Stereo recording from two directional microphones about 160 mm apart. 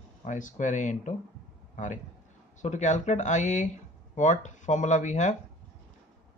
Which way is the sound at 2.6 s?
50° left (ahead or behind).